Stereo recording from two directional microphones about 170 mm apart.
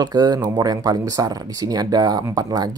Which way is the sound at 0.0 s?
25° right (ahead or behind).